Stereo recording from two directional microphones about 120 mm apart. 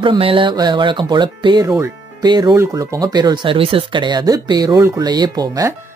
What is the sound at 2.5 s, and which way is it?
Speech, 25° right (ahead or behind).